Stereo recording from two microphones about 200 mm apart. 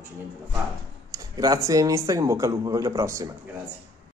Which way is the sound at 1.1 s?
15° right (ahead or behind).